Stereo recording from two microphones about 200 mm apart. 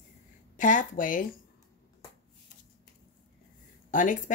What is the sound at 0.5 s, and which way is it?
Speech, 40° left (ahead or behind).